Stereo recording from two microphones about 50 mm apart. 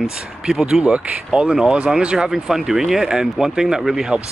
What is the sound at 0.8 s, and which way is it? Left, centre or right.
Speech, right.